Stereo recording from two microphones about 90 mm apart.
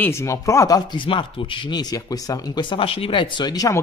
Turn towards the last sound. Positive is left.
turn(degrees=50)  # may be behind; listen again after turning